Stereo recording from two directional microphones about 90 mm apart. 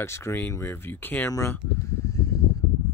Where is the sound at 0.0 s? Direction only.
30° left (ahead or behind).